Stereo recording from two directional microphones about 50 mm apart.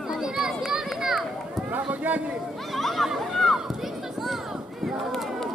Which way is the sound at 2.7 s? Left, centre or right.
Centre.